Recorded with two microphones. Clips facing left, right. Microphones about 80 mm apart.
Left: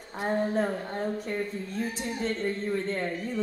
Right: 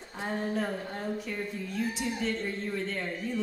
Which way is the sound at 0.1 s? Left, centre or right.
Left.